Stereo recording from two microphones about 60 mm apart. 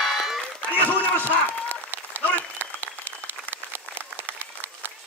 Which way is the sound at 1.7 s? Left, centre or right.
Right.